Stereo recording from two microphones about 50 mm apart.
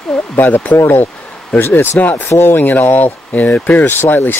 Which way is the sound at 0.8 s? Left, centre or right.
Left.